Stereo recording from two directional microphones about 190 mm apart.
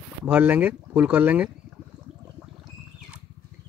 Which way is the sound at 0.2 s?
5° right (ahead or behind).